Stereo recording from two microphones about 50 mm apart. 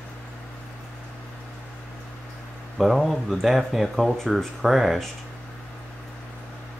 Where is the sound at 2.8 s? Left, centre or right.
Centre.